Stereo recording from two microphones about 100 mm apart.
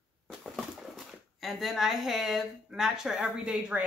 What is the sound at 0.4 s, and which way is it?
Speech, centre (ahead or behind).